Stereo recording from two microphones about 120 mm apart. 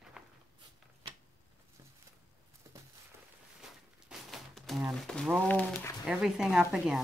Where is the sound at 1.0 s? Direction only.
50° right (ahead or behind).